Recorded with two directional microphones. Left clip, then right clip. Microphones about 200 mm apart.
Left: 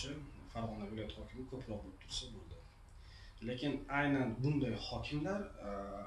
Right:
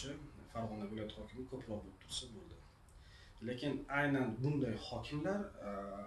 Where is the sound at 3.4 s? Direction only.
10° right (ahead or behind).